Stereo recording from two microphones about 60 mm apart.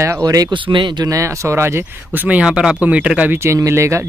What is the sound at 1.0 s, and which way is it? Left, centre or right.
Speech, right.